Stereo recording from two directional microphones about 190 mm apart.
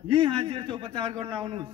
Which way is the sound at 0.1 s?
25° right (ahead or behind).